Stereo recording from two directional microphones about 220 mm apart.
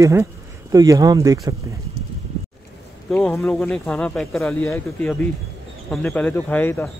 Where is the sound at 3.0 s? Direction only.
Centre (ahead or behind).